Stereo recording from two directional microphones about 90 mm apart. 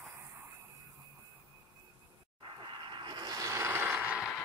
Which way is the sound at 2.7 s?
60° right (ahead or behind).